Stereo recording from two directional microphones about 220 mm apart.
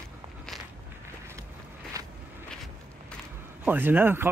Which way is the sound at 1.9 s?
15° right (ahead or behind).